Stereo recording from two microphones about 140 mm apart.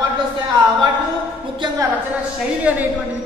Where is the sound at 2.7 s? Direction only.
10° right (ahead or behind).